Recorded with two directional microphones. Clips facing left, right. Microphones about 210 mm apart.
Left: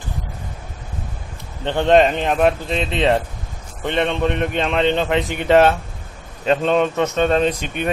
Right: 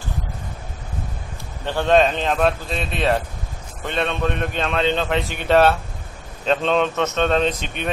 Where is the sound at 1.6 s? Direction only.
20° left (ahead or behind).